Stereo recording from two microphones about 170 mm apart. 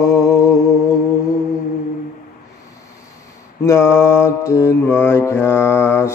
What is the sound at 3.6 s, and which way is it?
Mantra, 15° left (ahead or behind).